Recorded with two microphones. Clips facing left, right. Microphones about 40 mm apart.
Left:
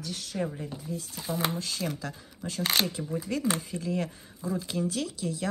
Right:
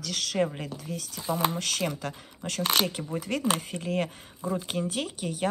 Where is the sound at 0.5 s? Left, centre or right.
Right.